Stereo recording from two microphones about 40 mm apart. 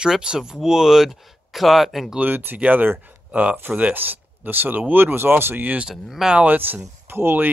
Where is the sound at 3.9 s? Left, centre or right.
Right.